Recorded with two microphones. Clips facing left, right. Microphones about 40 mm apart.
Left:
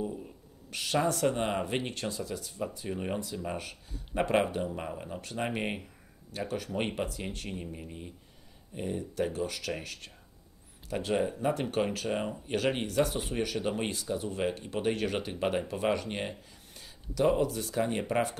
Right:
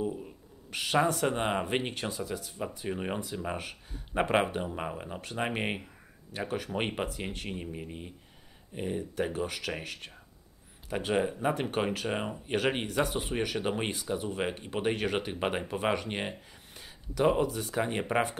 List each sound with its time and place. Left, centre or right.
0.1 s speech: centre